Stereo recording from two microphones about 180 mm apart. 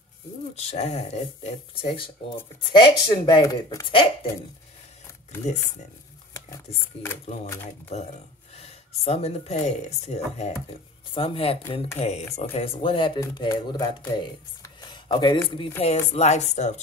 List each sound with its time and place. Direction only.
0.6 s speech: 35° left (ahead or behind)
6.3 s speech: 15° left (ahead or behind)
7.9 s speech: 35° left (ahead or behind)
16.1 s speech: 35° left (ahead or behind)